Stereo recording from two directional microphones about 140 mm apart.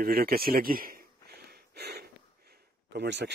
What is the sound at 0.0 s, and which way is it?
Speech, 90° right.